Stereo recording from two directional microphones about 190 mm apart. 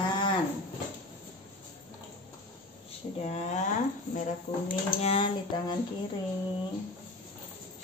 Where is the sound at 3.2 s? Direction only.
35° left (ahead or behind).